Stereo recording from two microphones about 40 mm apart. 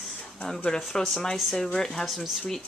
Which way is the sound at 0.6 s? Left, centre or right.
Centre.